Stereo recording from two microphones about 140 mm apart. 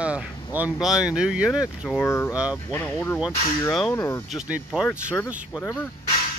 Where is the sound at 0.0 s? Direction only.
10° right (ahead or behind).